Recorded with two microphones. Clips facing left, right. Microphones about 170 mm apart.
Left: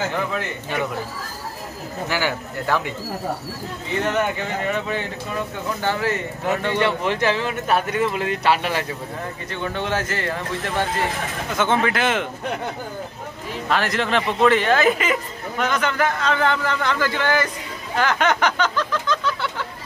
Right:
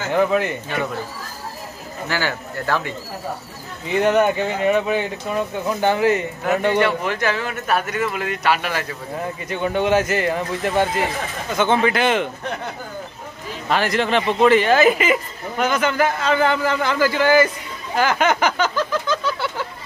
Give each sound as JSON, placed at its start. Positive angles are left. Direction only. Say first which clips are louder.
{"t": 0.1, "sound": "speech", "louder": "right 7 dB", "side_deg": -15}
{"t": 2.0, "sound": "speech", "louder": "even", "side_deg": 15}
{"t": 4.0, "sound": "speech", "louder": "right 6 dB", "side_deg": -15}
{"t": 7.1, "sound": "speech", "louder": "left 1 dB", "side_deg": 25}
{"t": 9.5, "sound": "speech", "louder": "right 7 dB", "side_deg": -15}
{"t": 11.5, "sound": "a man's voice", "louder": "right 3 dB", "side_deg": 0}
{"t": 13.7, "sound": "a man's voice", "louder": "right 2 dB", "side_deg": 0}
{"t": 17.9, "sound": "a sound", "louder": "right 2 dB", "side_deg": -5}